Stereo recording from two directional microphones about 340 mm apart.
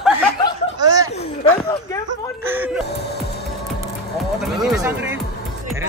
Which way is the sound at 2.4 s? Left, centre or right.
Centre.